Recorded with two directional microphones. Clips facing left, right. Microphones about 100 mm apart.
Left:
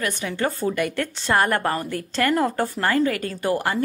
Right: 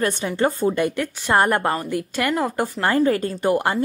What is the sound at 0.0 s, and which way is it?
Speech, 30° right (ahead or behind).